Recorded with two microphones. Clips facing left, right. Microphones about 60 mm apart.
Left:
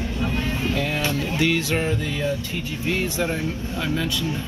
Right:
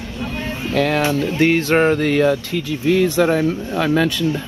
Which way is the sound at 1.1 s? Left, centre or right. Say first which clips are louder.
Right 6 dB; right.